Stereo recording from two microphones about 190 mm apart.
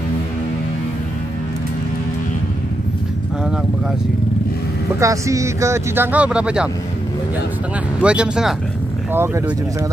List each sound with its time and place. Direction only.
5.0 s speech: 15° right (ahead or behind)
8.0 s speech: 5° right (ahead or behind)